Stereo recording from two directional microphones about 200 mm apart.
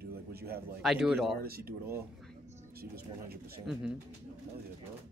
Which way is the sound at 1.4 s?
50° right (ahead or behind).